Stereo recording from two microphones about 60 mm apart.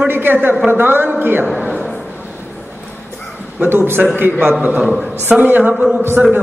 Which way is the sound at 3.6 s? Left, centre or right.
Right.